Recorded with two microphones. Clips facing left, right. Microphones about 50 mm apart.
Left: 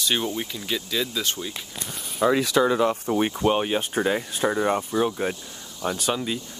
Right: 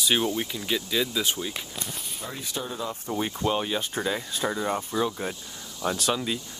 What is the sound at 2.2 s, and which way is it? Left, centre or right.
Speech, left.